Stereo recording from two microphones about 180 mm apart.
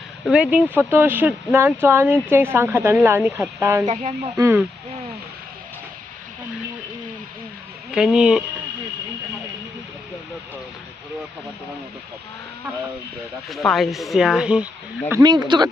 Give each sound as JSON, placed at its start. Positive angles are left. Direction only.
{"t": 0.3, "sound": "speech", "side_deg": -5}
{"t": 7.9, "sound": "speech", "side_deg": -5}
{"t": 13.5, "sound": "speech", "side_deg": 0}